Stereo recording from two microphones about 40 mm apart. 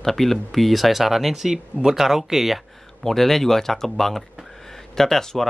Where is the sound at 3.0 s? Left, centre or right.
Centre.